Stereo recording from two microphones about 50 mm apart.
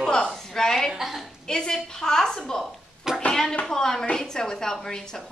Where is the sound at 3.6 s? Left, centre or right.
Centre.